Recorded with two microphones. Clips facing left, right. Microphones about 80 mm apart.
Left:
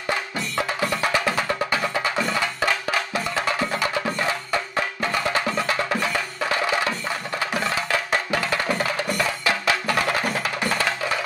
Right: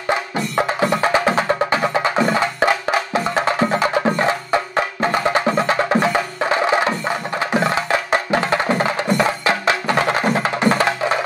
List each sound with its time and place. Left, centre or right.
0.1 s music: right